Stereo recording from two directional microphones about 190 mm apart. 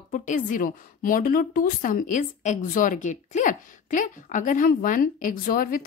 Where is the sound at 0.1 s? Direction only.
45° left (ahead or behind).